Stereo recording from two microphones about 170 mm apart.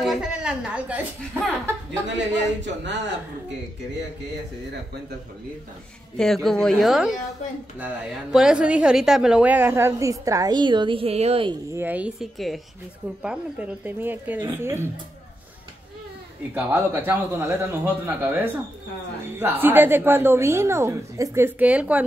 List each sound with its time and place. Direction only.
0.0 s a woman's voice: centre (ahead or behind)
2.0 s speech: 90° right
6.1 s a woman's voice: centre (ahead or behind); by 11.5 s 35° right (ahead or behind)
11.7 s a woman's voice: 10° right (ahead or behind)
16.5 s a woman's voice: 10° right (ahead or behind)